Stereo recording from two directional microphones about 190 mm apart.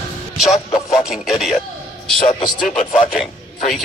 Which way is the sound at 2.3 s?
20° left (ahead or behind).